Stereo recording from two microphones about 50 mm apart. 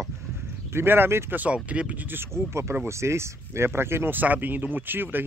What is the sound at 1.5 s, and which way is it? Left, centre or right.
Speech, right.